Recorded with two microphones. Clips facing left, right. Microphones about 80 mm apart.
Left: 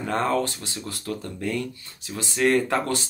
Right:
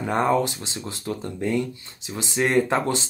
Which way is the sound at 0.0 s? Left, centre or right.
Centre.